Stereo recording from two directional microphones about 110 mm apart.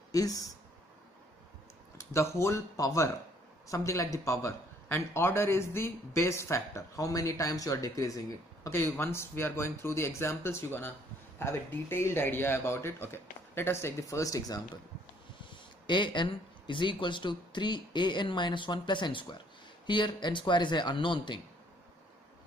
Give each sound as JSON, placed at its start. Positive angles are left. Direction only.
{"t": 0.1, "sound": "speech", "side_deg": 35}
{"t": 2.0, "sound": "a man's voice", "side_deg": 25}
{"t": 8.6, "sound": "a man's voice", "side_deg": 20}
{"t": 15.5, "sound": "speech", "side_deg": 45}